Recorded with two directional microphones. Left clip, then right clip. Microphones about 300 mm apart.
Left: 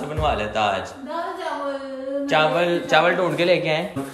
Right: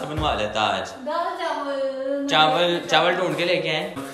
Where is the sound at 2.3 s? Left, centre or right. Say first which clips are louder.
Even; centre.